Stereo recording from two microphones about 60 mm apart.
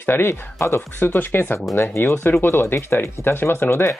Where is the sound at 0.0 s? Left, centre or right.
Left.